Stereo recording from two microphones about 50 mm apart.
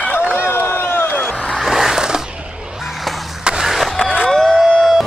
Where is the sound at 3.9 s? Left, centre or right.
Centre.